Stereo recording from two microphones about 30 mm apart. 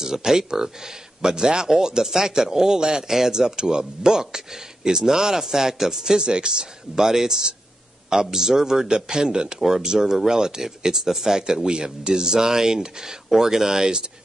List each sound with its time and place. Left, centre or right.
0.0 s speech: centre
7.0 s speech: centre